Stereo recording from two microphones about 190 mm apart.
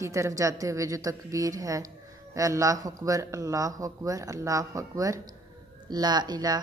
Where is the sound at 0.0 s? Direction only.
15° right (ahead or behind).